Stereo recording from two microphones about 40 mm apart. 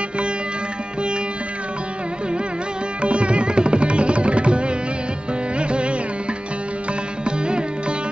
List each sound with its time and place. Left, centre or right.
3.0 s music: right
7.2 s music: right